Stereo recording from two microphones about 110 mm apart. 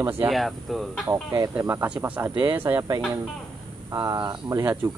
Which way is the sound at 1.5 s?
20° right (ahead or behind).